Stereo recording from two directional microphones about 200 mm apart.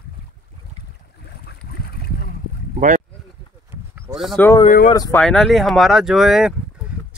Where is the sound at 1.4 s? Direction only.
50° left (ahead or behind).